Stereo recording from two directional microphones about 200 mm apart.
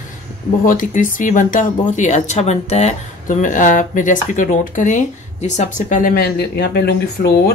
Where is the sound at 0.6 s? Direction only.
40° left (ahead or behind).